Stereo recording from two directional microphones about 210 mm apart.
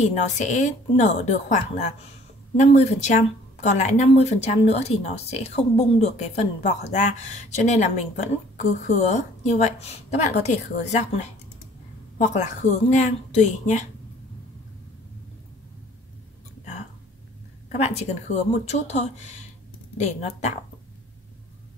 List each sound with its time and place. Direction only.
0.0 s speech: 35° left (ahead or behind)
17.6 s speech: 30° left (ahead or behind)